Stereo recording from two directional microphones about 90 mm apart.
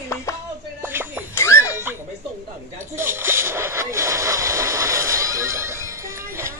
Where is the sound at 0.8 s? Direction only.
25° right (ahead or behind).